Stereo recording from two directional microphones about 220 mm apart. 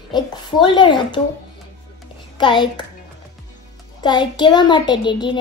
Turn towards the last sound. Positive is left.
turn(degrees=20)  # may be behind; listen again after turning